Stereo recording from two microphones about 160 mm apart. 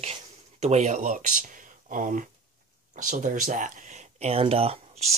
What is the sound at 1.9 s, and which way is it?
Speech, 55° right (ahead or behind).